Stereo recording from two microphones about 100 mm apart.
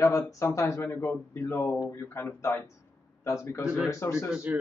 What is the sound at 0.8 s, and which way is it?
Speech, 20° left (ahead or behind).